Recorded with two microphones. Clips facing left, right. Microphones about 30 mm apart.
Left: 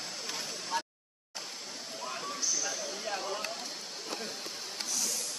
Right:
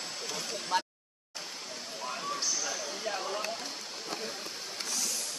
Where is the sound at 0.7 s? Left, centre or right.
Right.